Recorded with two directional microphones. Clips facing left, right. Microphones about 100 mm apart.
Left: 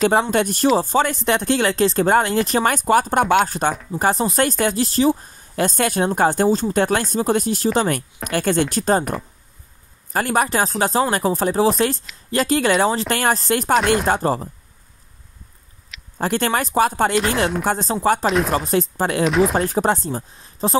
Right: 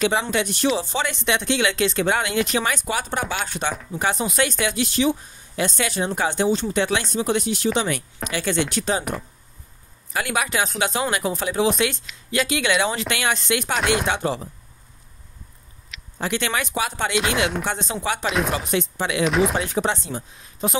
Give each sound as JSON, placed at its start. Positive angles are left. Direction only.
{"t": 0.0, "sound": "speech", "side_deg": 45}
{"t": 3.4, "sound": "speech", "side_deg": 40}
{"t": 10.1, "sound": "speech", "side_deg": 40}
{"t": 16.2, "sound": "speech", "side_deg": 45}
{"t": 18.2, "sound": "speech", "side_deg": 0}
{"t": 18.7, "sound": "speech", "side_deg": 40}
{"t": 19.2, "sound": "speech", "side_deg": 0}
{"t": 19.6, "sound": "speech", "side_deg": 40}